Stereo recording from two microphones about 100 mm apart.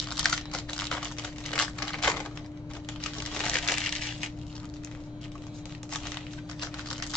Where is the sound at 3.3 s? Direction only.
5° left (ahead or behind).